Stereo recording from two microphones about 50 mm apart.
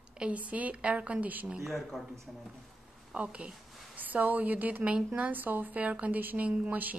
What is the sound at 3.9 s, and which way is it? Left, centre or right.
Speech, right.